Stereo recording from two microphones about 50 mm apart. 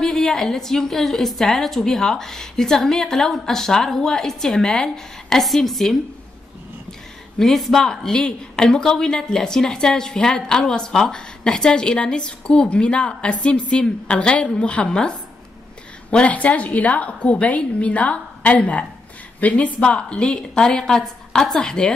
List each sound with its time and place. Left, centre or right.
0.0 s a woman's voice: centre
5.4 s a woman's voice: centre